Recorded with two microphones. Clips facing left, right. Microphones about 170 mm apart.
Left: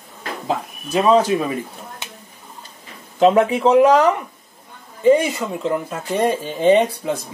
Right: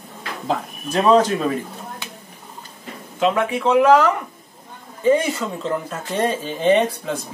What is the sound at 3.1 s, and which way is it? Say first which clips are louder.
Speech: left 5 dB; 35° left (ahead or behind).